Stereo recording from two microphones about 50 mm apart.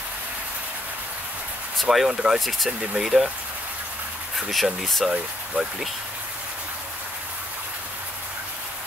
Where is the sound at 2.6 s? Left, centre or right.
Centre.